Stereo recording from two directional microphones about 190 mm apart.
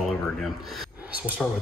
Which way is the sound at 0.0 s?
Centre (ahead or behind).